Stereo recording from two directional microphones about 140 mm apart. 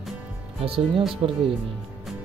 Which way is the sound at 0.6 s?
40° right (ahead or behind).